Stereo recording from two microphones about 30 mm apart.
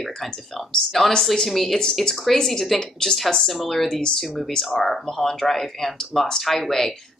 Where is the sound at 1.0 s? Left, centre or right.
Centre.